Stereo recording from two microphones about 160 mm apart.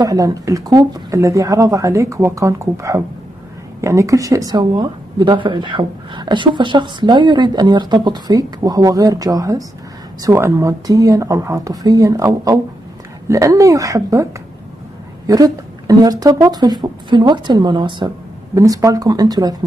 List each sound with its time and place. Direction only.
0.0 s speech: 20° right (ahead or behind)
15.2 s speech: 25° right (ahead or behind)